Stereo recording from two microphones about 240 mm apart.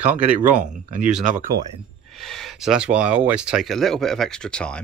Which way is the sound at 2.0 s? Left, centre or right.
Centre.